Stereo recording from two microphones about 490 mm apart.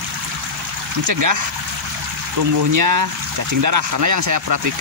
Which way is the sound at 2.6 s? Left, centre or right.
Right.